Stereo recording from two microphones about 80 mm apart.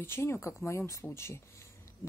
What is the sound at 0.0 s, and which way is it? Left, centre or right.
A woman's voice, left.